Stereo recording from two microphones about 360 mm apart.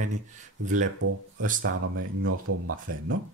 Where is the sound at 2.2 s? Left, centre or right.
Right.